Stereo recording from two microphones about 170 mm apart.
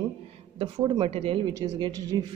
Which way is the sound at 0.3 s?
35° right (ahead or behind).